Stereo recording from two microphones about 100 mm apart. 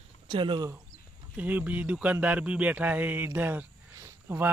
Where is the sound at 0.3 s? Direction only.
60° right (ahead or behind).